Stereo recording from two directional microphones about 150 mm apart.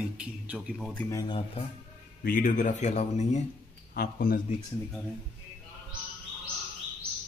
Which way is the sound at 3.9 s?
80° left.